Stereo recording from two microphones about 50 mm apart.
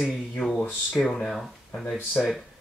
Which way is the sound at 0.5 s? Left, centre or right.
Centre.